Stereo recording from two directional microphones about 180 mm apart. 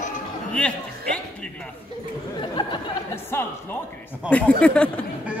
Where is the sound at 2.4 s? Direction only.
25° left (ahead or behind).